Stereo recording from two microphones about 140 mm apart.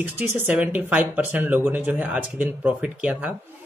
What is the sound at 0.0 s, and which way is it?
Speech, 10° right (ahead or behind).